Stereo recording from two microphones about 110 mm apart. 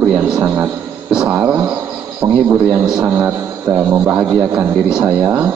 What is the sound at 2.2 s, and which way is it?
Speech, 35° right (ahead or behind).